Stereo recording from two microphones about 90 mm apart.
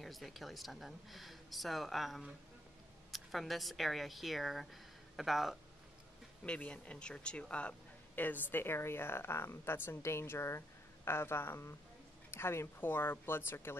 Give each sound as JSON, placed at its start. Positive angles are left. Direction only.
{"t": 0.0, "sound": "speech", "side_deg": 0}
{"t": 6.4, "sound": "a woman's voice", "side_deg": 10}